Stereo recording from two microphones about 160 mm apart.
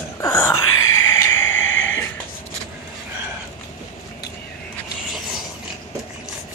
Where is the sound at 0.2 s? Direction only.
15° left (ahead or behind).